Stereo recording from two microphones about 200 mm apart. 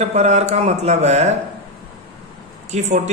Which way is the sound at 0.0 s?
35° right (ahead or behind).